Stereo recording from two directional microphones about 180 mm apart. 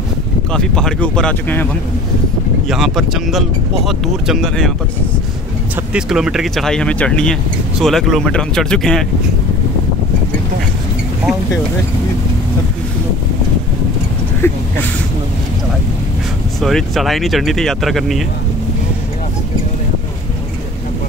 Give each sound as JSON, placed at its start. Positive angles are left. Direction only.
{"t": 0.5, "sound": "speech", "side_deg": 5}
{"t": 2.7, "sound": "speech", "side_deg": 0}
{"t": 5.9, "sound": "speech", "side_deg": -5}
{"t": 14.4, "sound": "speech", "side_deg": 15}
{"t": 16.6, "sound": "speech", "side_deg": 0}